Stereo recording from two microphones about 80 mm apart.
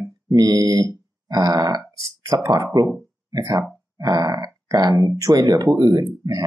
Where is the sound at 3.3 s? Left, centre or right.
Right.